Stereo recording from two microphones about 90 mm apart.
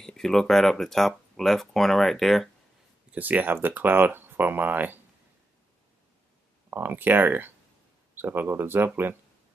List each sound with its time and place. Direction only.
0.0 s speech: 5° left (ahead or behind)
3.1 s speech: 20° right (ahead or behind)
6.7 s speech: 20° right (ahead or behind)